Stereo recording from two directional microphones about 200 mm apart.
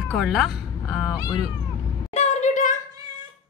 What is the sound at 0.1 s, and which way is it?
Speech, centre (ahead or behind).